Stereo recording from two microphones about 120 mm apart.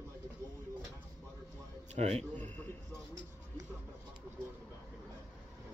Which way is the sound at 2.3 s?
15° left (ahead or behind).